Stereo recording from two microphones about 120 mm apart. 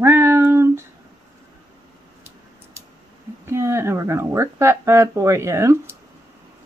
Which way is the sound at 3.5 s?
20° right (ahead or behind).